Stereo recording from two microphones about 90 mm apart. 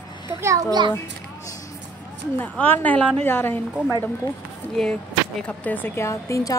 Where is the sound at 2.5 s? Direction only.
20° left (ahead or behind).